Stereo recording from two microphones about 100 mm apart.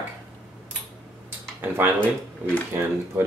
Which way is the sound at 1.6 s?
20° right (ahead or behind).